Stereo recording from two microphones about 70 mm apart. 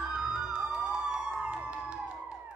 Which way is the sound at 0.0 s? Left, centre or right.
Centre.